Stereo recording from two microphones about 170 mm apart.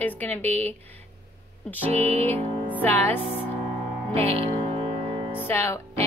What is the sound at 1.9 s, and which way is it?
Music, 40° right (ahead or behind).